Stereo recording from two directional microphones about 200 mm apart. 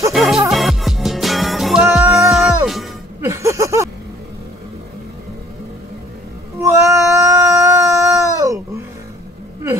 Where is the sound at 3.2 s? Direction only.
15° right (ahead or behind).